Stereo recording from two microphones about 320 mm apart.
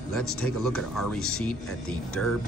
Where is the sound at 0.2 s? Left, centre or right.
Left.